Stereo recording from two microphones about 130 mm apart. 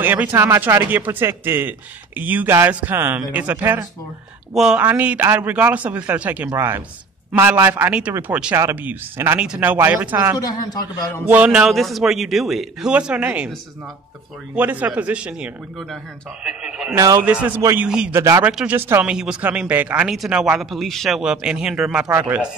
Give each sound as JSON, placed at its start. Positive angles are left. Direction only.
{"t": 0.0, "sound": "speech", "side_deg": -15}
{"t": 10.4, "sound": "a man's voice", "side_deg": 30}
{"t": 11.2, "sound": "a man's voice", "side_deg": -10}
{"t": 14.5, "sound": "a man's voice", "side_deg": -15}
{"t": 16.9, "sound": "speech", "side_deg": -25}
{"t": 17.2, "sound": "speech", "side_deg": -10}
{"t": 17.6, "sound": "speech", "side_deg": -20}
{"t": 17.8, "sound": "speech", "side_deg": -5}
{"t": 18.1, "sound": "speech", "side_deg": -20}
{"t": 18.4, "sound": "a man's voice", "side_deg": -10}